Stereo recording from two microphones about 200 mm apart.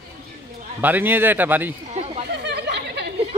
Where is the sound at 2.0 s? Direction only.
35° right (ahead or behind).